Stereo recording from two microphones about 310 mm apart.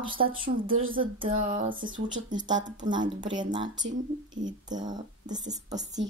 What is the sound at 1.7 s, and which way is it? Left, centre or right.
Speech, right.